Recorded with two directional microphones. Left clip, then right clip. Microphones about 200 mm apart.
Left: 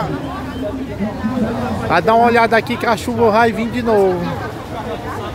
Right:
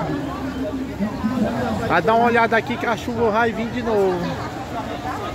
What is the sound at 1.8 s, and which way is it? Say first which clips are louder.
Speech: left 5 dB; 5° left (ahead or behind).